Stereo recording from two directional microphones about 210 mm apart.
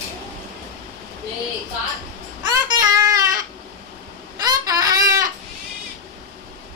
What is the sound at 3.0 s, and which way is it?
Goat, 15° right (ahead or behind).